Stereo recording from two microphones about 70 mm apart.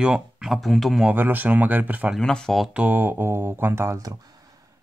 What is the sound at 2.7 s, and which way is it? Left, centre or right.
Speech, right.